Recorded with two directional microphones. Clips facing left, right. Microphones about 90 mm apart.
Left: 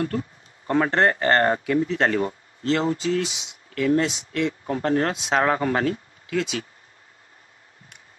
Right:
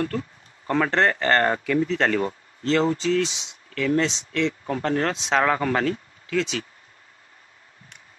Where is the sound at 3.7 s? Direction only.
25° left (ahead or behind).